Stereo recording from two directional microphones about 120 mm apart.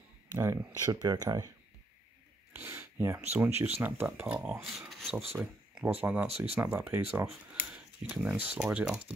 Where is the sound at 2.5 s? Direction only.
20° right (ahead or behind).